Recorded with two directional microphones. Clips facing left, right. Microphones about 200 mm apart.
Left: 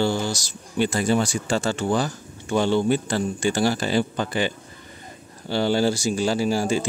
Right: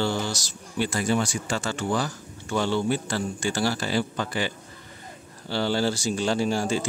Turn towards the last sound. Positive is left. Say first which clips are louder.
# left 3 dB
turn(degrees=10)  # may be behind; listen again after turning